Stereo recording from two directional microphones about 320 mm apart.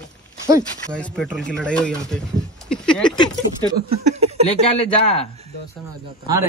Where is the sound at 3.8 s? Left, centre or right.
Centre.